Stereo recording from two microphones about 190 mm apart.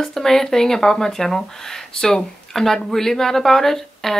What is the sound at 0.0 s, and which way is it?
Speech, centre (ahead or behind).